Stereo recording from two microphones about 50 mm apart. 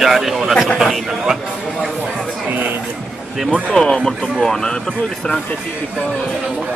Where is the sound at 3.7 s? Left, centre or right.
Centre.